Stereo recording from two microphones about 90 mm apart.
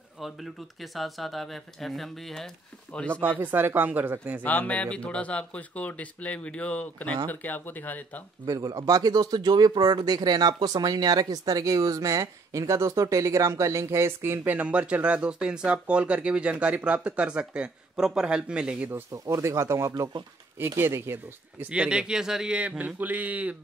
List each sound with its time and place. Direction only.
0.2 s speech: centre (ahead or behind)
3.1 s speech: 20° right (ahead or behind)
4.4 s speech: 20° left (ahead or behind)
8.5 s speech: 45° right (ahead or behind); by 18.9 s 10° right (ahead or behind)
19.1 s speech: 35° right (ahead or behind)
21.6 s speech: 10° right (ahead or behind)